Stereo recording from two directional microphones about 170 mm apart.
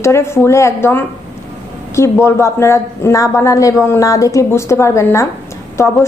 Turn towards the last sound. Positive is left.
turn(degrees=15)  # may be behind; listen again after turning